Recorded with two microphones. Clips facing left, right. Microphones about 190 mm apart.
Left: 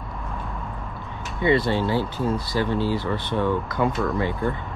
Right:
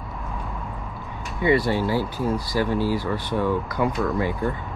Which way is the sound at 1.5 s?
20° left (ahead or behind).